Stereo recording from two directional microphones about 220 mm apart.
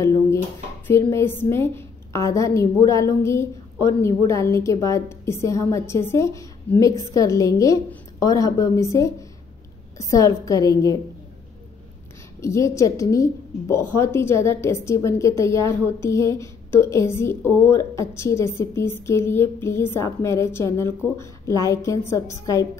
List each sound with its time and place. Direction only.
0.8 s a woman's voice: 10° left (ahead or behind)
12.4 s a woman's voice: 15° left (ahead or behind)